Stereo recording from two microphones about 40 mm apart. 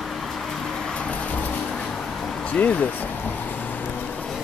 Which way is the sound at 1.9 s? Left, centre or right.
Centre.